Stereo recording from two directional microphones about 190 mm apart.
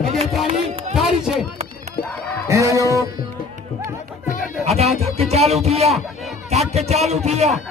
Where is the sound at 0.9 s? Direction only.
Centre (ahead or behind).